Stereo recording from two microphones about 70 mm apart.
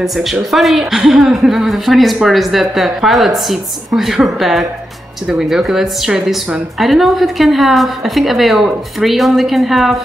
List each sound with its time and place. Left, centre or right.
0.0 s a woman's voice: centre